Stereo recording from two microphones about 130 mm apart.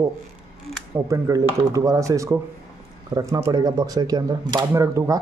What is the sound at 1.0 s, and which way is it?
Speech, 25° right (ahead or behind).